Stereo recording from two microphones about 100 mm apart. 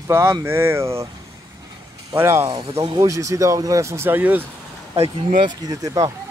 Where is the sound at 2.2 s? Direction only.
30° right (ahead or behind).